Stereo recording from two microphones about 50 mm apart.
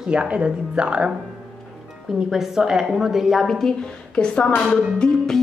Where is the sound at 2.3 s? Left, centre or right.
Centre.